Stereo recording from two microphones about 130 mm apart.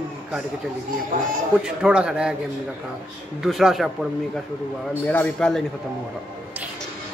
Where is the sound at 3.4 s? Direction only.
Centre (ahead or behind).